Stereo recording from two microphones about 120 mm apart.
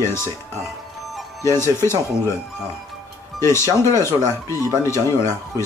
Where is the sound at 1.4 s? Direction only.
20° left (ahead or behind).